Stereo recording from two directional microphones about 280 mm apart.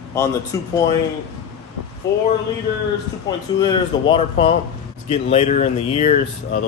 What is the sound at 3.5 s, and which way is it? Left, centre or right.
A man's voice, centre.